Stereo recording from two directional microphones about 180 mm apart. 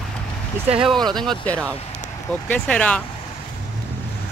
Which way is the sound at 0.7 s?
Centre (ahead or behind).